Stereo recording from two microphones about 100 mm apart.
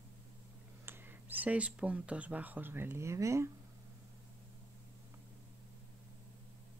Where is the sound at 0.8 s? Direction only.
20° right (ahead or behind).